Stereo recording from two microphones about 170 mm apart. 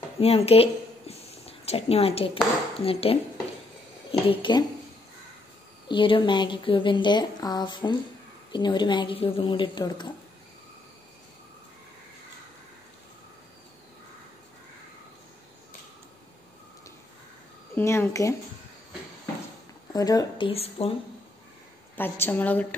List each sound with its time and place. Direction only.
0.2 s a sound: 35° left (ahead or behind)
2.8 s speech: 35° left (ahead or behind)
4.3 s a woman's voice: 30° left (ahead or behind)
5.9 s a woman's voice: 30° left (ahead or behind)
17.7 s a woman's voice: 15° left (ahead or behind)
19.9 s a woman's voice: 20° left (ahead or behind)
21.9 s a woman's voice: 10° left (ahead or behind)